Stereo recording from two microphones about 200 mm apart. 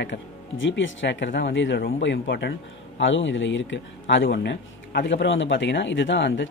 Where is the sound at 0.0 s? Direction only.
65° left (ahead or behind).